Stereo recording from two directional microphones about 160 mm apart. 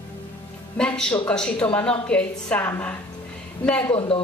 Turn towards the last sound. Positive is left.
turn(degrees=35)  # may be behind; listen again after turning